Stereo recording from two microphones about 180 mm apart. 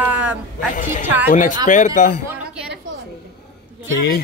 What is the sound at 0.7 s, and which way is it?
Speech, 45° left (ahead or behind).